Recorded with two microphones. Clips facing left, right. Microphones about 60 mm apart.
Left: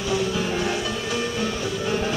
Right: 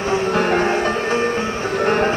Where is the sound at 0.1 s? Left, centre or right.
Right.